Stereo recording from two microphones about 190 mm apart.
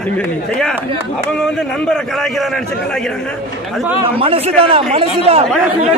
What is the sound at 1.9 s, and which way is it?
Speech, centre (ahead or behind).